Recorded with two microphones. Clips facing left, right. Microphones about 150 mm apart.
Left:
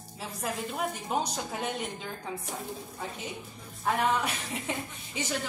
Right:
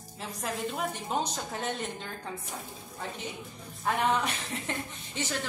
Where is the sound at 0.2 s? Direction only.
10° left (ahead or behind).